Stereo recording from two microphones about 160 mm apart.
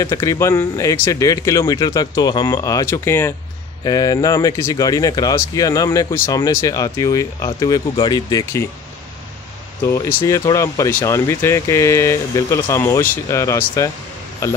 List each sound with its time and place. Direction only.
0.0 s speech: 20° left (ahead or behind)
9.8 s speech: 20° left (ahead or behind)